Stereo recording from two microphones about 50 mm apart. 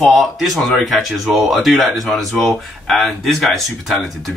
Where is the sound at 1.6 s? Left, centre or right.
Centre.